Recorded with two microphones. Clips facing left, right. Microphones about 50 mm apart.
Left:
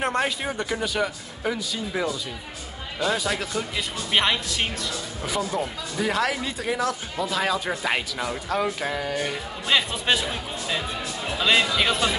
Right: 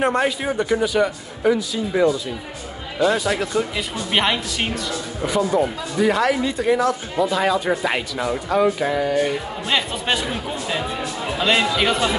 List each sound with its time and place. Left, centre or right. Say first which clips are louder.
0.0 s speech: right 5 dB; centre
5.9 s speech: right 6 dB; centre